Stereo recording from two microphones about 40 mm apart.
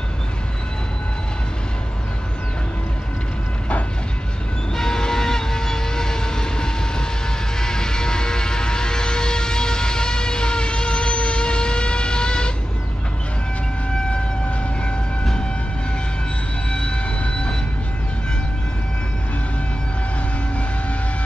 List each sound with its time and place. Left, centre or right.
4.7 s train: centre
7.5 s music: centre
16.7 s vehicle: left